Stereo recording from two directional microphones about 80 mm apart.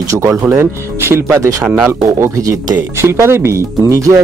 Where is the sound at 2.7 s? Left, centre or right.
Right.